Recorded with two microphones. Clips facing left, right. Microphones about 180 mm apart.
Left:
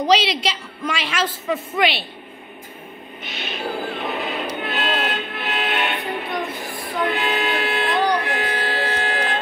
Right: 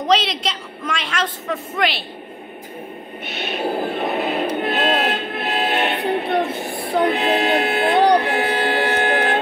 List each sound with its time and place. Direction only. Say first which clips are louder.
0.0 s a woman's voice: left 1 dB; centre (ahead or behind)
3.3 s music: right 5 dB; 45° right (ahead or behind)
7.8 s music: right 6 dB; 65° right (ahead or behind)